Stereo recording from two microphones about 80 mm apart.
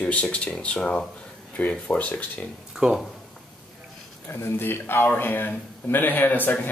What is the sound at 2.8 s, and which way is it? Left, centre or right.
Speech, centre.